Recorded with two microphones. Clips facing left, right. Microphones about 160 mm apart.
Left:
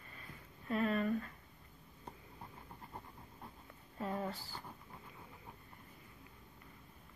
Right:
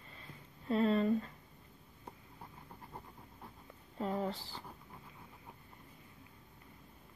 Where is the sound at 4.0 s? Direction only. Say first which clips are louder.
Right 3 dB; 25° right (ahead or behind).